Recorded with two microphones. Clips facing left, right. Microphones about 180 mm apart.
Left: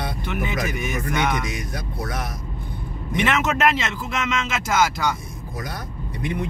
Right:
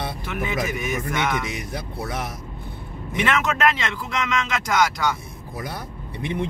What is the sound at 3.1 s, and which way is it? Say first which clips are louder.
Speech: left 1 dB; 5° left (ahead or behind).